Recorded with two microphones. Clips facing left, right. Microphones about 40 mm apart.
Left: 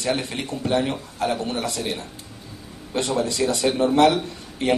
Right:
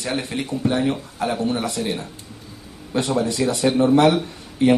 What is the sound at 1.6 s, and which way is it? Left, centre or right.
Speech, right.